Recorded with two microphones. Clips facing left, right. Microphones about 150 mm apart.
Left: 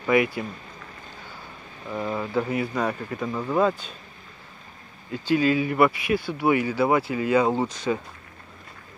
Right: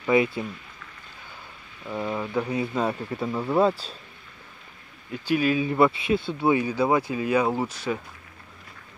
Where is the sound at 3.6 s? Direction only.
35° right (ahead or behind).